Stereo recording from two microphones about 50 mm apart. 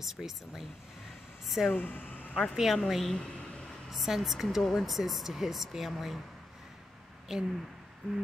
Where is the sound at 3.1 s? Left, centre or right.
Centre.